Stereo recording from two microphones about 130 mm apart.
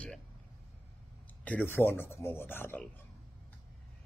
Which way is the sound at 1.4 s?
15° left (ahead or behind).